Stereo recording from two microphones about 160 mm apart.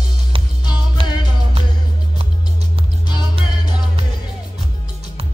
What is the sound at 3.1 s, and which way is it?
Music, 30° left (ahead or behind).